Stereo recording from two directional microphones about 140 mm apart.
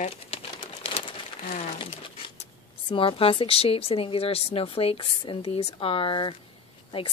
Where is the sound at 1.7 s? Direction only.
40° left (ahead or behind).